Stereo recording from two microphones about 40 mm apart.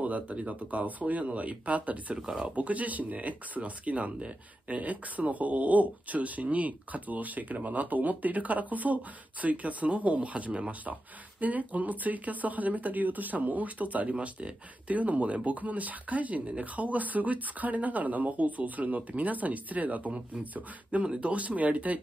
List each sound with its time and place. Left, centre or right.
0.0 s speech: right
21.0 s speech: right